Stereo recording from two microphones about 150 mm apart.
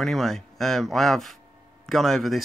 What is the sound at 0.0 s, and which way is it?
Speech, centre (ahead or behind).